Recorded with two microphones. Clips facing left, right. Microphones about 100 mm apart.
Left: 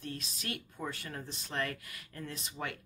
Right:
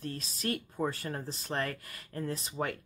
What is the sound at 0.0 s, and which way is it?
Speech, 40° right (ahead or behind).